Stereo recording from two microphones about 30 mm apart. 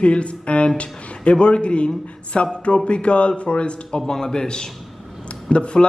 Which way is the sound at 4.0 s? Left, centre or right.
Centre.